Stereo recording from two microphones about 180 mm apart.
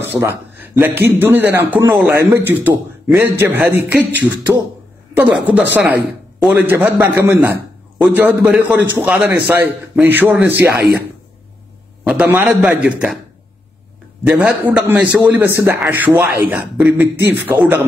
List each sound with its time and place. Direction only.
0.0 s a man's voice: 10° right (ahead or behind)
10.7 s speech: 60° right (ahead or behind)
12.1 s a man's voice: 5° right (ahead or behind)
14.2 s a man's voice: 5° right (ahead or behind)